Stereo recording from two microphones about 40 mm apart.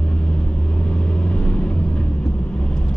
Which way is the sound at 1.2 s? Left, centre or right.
Left.